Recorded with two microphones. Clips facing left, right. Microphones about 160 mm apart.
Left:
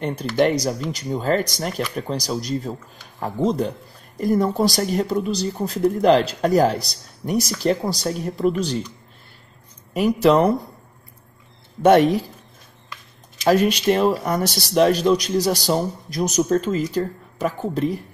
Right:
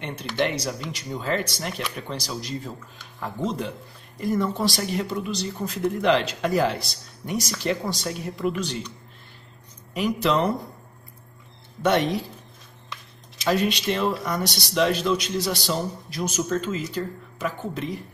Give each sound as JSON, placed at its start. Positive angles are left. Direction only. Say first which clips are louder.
{"t": 0.4, "sound": "speech", "louder": "left 7 dB", "side_deg": 45}
{"t": 1.7, "sound": "speech", "louder": "left 5 dB", "side_deg": 0}
{"t": 2.0, "sound": "speech", "louder": "left 7 dB", "side_deg": 40}
{"t": 9.9, "sound": "speech", "louder": "left 7 dB", "side_deg": 45}
{"t": 11.8, "sound": "speech", "louder": "left 8 dB", "side_deg": 50}
{"t": 13.4, "sound": "speech", "louder": "left 6 dB", "side_deg": 45}